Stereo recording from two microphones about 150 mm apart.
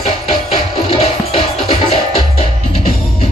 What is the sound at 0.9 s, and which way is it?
Music, 40° left (ahead or behind).